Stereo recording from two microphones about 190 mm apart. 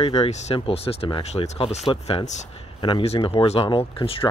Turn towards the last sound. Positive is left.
turn(degrees=30)  # may be behind; listen again after turning